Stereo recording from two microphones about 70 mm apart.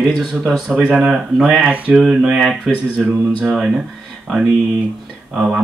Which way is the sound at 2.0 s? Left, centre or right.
Centre.